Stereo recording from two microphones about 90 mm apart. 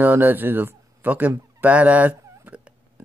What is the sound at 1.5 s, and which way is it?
Fowl, 15° right (ahead or behind).